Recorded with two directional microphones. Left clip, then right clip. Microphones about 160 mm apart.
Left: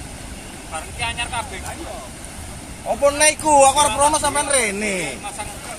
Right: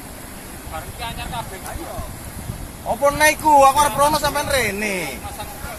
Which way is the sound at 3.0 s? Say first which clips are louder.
Right 1 dB; 45° left (ahead or behind).